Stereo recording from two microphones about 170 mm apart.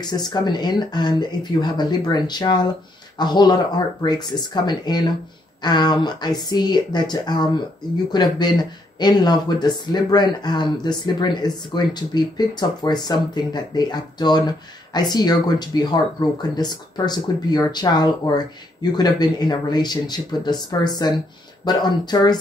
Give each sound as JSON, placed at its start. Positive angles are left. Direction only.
{"t": 0.0, "sound": "speech", "side_deg": 25}